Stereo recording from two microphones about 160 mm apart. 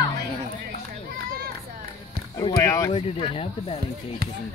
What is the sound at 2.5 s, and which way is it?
Speech, 20° left (ahead or behind).